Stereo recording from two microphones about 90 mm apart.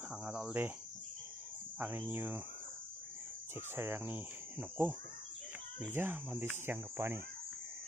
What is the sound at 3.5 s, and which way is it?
Speech, 25° right (ahead or behind).